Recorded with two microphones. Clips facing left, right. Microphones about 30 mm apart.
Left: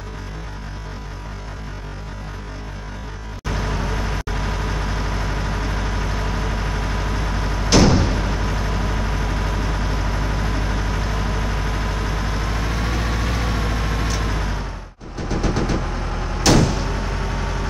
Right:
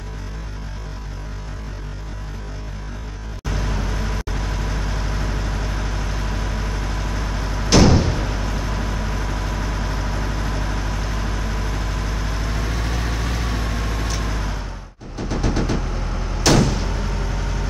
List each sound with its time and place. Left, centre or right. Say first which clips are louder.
3.4 s vehicle: left 2 dB; centre
7.7 s vehicle: right 1 dB; centre
15.1 s a sound: left 1 dB; centre
15.8 s vehicle: left 2 dB; centre
16.4 s a sound: even; centre
16.9 s vehicle: left 2 dB; centre